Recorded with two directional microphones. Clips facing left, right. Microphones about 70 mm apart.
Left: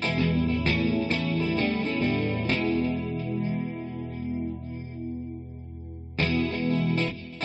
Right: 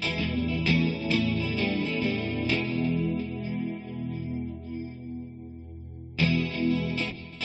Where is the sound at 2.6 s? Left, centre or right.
Centre.